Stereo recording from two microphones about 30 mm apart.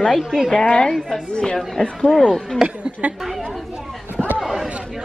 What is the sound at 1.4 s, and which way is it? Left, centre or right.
Speech, left.